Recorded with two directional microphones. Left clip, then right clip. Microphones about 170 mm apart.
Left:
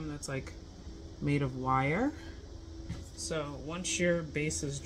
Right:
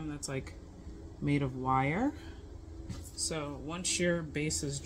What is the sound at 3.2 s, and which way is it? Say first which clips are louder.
Speech: left 1 dB; 10° left (ahead or behind).